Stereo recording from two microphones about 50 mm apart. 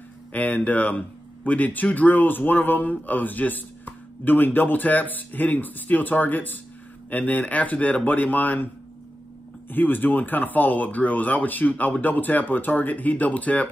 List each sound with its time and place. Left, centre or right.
0.3 s speech: left
9.7 s speech: left